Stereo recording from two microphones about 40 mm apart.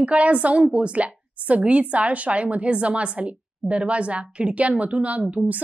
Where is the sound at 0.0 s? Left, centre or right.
Right.